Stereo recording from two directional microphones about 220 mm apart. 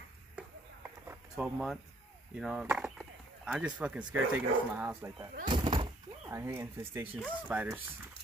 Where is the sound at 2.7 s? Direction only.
Centre (ahead or behind).